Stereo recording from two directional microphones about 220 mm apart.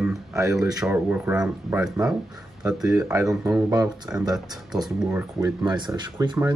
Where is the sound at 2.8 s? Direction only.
15° right (ahead or behind).